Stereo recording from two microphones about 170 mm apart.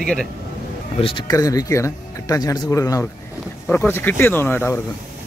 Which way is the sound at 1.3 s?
20° left (ahead or behind).